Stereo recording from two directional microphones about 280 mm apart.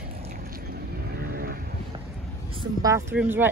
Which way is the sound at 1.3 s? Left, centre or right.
Right.